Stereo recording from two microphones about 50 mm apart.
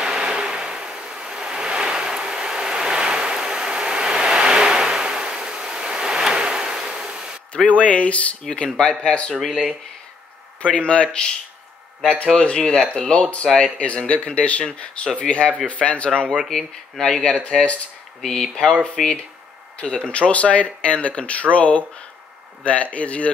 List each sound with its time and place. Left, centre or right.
0.0 s vehicle: centre
6.6 s a sound: centre
7.5 s speech: left
9.0 s speech: left
9.3 s speech: centre
10.6 s speech: left
12.3 s speech: centre
18.2 s speech: centre